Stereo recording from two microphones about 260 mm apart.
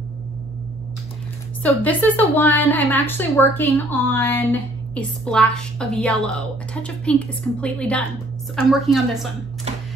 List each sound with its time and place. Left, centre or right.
1.6 s a woman's voice: centre